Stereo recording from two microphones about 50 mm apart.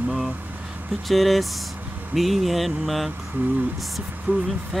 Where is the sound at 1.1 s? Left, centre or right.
Centre.